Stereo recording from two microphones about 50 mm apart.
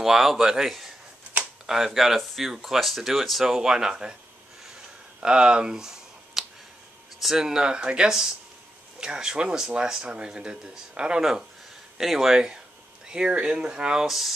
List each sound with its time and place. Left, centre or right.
0.0 s speech: centre
3.4 s speech: centre
5.2 s a sound: centre
7.2 s speech: centre
14.0 s speech: centre